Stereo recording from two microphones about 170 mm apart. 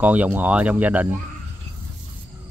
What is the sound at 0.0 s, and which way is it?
Speech, 10° right (ahead or behind).